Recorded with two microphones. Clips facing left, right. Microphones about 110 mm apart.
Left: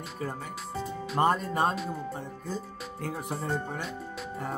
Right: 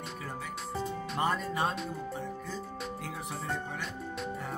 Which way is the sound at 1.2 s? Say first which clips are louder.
Left 5 dB; 45° left (ahead or behind).